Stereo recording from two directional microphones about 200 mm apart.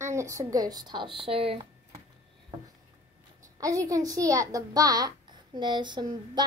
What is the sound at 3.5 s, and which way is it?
A child's voice, 15° right (ahead or behind).